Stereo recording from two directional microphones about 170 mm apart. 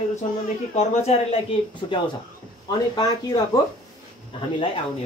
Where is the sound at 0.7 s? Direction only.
35° left (ahead or behind).